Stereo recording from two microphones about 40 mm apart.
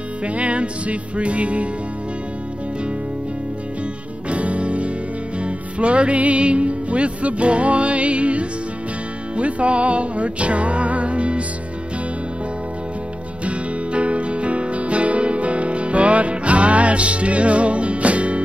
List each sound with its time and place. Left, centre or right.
0.2 s music: right
4.3 s music: right
13.5 s music: right